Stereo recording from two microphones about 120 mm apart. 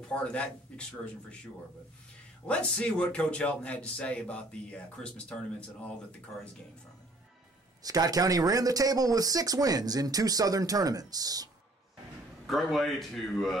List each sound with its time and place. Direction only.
0.1 s speech: 10° left (ahead or behind)
2.4 s speech: 10° left (ahead or behind)
7.8 s speech: 30° right (ahead or behind)
12.4 s a man's voice: centre (ahead or behind)